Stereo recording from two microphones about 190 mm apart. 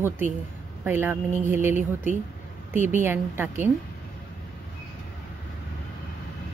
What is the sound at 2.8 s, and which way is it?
Speech, 10° right (ahead or behind).